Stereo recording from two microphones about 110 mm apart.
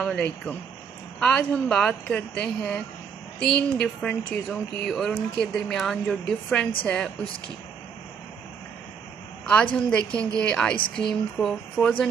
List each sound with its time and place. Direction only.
0.0 s speech: 15° left (ahead or behind)
9.8 s speech: 10° left (ahead or behind)